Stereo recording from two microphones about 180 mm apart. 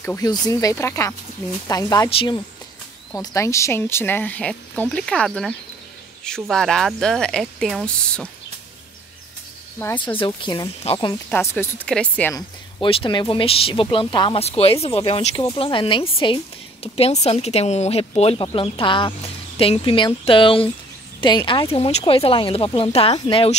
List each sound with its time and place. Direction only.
0.0 s speech: 15° left (ahead or behind)
3.2 s speech: 15° left (ahead or behind)
9.8 s speech: 15° left (ahead or behind)
10.1 s speech: 25° left (ahead or behind)
11.2 s speech: 10° left (ahead or behind)
12.4 s speech: 25° left (ahead or behind)